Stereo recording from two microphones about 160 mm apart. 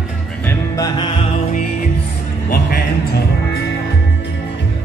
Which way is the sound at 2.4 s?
65° left (ahead or behind).